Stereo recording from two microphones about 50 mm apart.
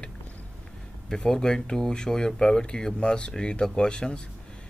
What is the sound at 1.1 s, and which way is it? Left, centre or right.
Speech, centre.